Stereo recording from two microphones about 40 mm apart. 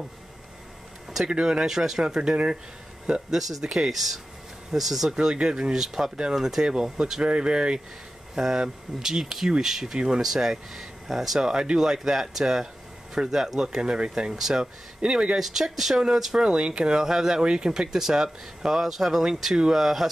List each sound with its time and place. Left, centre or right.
1.4 s speech: centre
3.1 s speech: centre
5.1 s speech: right
15.0 s speech: right
15.3 s speech: centre
16.4 s speech: right; by 20.1 s centre